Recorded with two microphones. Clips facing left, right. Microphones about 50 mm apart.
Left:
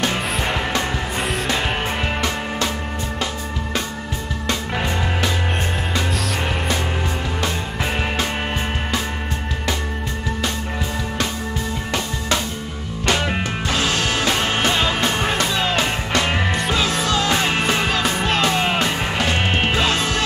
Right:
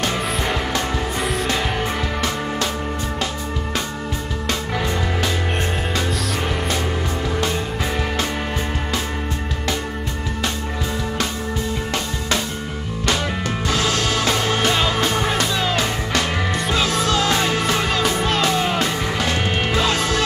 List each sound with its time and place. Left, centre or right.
4.5 s music: left
13.0 s music: left
15.7 s music: left
16.5 s music: centre
17.8 s music: centre
18.5 s music: left